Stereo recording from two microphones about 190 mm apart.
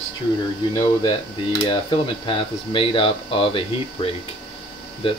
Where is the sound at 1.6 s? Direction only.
25° left (ahead or behind).